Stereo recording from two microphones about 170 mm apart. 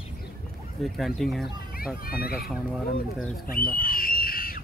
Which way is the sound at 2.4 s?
Centre (ahead or behind).